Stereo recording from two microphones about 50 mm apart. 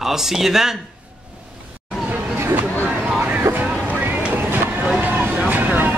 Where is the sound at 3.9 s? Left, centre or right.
Right.